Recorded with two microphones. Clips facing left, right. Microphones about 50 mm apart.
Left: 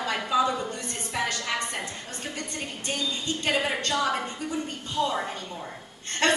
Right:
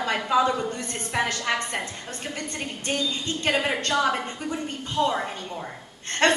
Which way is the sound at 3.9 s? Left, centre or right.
Right.